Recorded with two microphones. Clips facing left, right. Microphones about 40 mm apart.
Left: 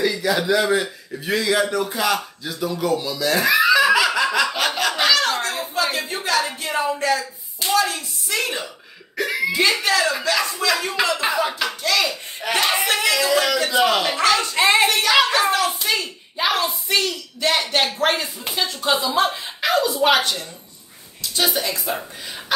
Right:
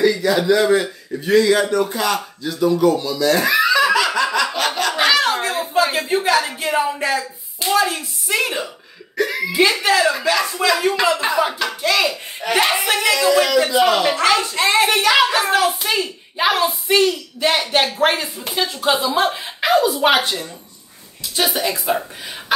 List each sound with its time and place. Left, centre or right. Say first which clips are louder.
0.0 s a man's voice: right 4 dB; centre
4.9 s a sound: right 5 dB; centre
7.8 s speech: right 3 dB; centre
9.2 s speech: right 2 dB; centre
9.5 s speech: right 4 dB; centre
11.1 s speech: right 3 dB; centre
11.8 s a child's voice: right 4 dB; right
12.9 s speech: right 5 dB; centre
14.9 s speech: right 2 dB; centre